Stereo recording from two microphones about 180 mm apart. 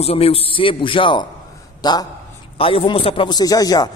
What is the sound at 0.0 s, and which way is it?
A man's voice, 35° left (ahead or behind).